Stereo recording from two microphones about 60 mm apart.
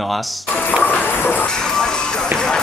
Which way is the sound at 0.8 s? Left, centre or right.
Left.